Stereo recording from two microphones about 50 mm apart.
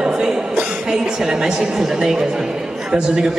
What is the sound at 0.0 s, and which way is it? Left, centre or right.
A woman's voice, centre.